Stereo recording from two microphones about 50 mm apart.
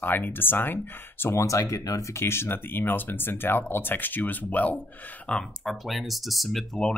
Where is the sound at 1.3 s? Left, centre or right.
Left.